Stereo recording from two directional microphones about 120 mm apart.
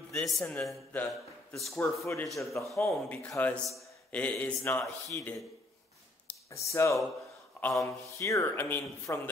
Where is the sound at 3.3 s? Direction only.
20° left (ahead or behind).